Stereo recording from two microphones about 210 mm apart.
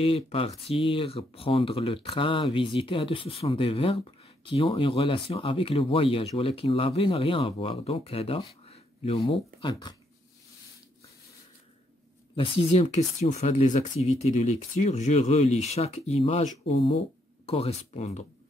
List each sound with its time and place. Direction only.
0.0 s speech: 25° left (ahead or behind)
12.4 s speech: 30° left (ahead or behind)